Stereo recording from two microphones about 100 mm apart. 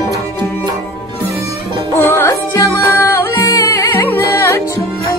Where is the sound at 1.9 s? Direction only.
25° left (ahead or behind).